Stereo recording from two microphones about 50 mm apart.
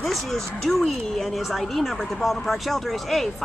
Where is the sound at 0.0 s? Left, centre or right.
Centre.